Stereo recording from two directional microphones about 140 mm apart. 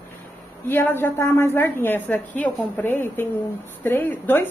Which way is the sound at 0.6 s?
15° left (ahead or behind).